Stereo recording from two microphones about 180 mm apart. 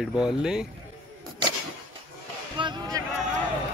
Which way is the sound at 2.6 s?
25° right (ahead or behind).